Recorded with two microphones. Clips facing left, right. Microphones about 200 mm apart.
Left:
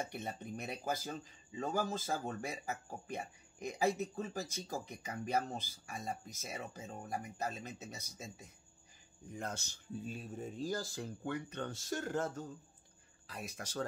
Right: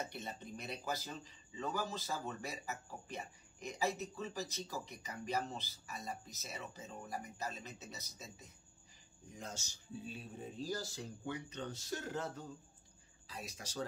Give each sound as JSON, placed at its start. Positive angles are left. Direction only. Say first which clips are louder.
{"t": 0.1, "sound": "speech", "louder": "left 4 dB", "side_deg": 50}